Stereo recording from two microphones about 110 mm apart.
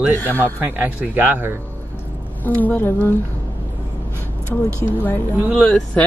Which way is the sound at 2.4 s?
15° left (ahead or behind).